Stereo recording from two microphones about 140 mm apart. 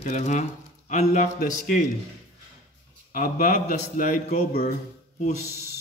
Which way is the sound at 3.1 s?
75° left (ahead or behind).